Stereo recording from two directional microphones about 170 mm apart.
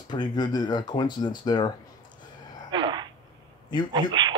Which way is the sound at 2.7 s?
25° right (ahead or behind).